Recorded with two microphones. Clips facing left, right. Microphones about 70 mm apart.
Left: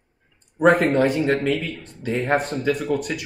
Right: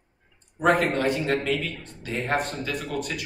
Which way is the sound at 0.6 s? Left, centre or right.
Left.